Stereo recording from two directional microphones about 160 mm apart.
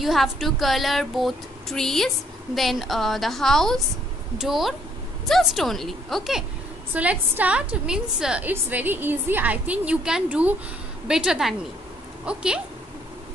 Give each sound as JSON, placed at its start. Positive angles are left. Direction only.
{"t": 0.0, "sound": "a woman's voice", "side_deg": 0}